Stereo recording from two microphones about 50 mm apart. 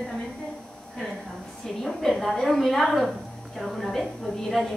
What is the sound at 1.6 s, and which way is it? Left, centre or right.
A woman's voice, centre.